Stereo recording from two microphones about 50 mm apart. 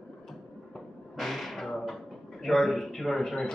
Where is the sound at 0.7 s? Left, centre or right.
Centre.